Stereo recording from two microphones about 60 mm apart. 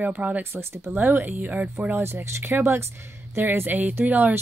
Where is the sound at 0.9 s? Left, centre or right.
Right.